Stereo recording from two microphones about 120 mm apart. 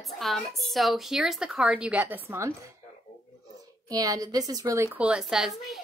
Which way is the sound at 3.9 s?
30° right (ahead or behind).